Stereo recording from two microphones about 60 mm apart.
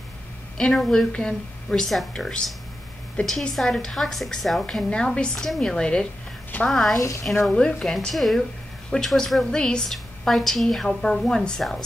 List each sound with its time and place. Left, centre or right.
0.6 s a woman's voice: centre
4.8 s a woman's voice: centre
7.3 s speech: centre
7.8 s a woman's voice: centre